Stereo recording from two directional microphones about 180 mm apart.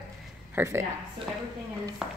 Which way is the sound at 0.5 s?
15° right (ahead or behind).